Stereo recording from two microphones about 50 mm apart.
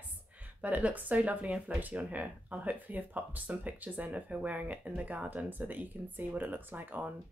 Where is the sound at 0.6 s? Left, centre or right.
Right.